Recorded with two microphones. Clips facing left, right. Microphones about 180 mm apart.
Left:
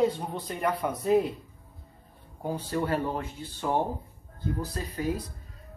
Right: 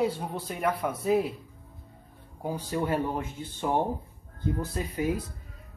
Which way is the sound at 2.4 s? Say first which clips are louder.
Even; 10° right (ahead or behind).